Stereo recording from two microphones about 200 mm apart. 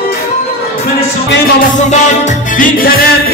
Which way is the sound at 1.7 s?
40° left (ahead or behind).